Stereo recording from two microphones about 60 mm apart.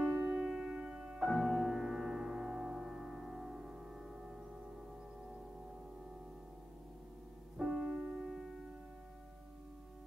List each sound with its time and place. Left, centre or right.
0.2 s music: right; by 4.4 s centre
7.5 s music: centre